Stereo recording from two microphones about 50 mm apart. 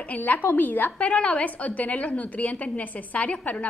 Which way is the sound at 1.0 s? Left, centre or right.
Left.